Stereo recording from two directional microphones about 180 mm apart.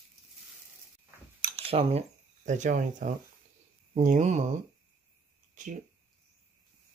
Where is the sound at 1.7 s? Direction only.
35° right (ahead or behind).